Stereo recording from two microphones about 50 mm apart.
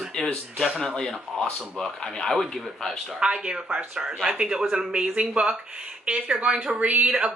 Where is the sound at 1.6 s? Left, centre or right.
Centre.